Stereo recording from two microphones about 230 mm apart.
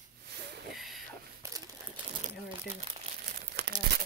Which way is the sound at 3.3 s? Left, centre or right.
Right.